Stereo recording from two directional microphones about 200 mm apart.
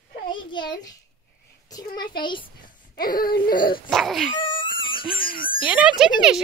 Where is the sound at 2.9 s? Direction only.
45° left (ahead or behind).